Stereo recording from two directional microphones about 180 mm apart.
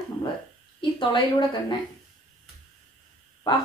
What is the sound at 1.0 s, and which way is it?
Speech, 25° left (ahead or behind).